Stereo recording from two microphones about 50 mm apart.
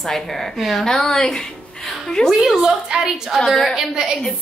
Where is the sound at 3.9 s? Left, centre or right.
Centre.